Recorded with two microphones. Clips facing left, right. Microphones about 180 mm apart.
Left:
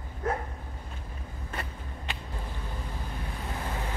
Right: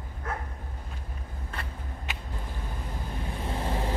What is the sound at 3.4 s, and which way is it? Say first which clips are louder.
Vehicle: right 5 dB; 30° right (ahead or behind).